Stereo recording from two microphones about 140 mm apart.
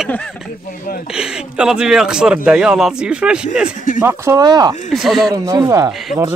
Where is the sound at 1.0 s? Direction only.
5° right (ahead or behind); by 4.7 s 30° right (ahead or behind).